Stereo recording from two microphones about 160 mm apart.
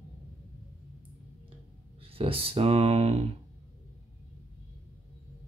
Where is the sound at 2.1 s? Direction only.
35° right (ahead or behind).